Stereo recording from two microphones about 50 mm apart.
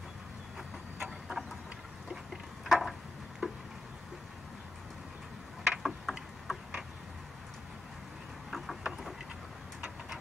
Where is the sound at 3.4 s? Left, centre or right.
Right.